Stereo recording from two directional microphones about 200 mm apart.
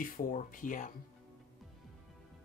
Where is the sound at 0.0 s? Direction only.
45° left (ahead or behind).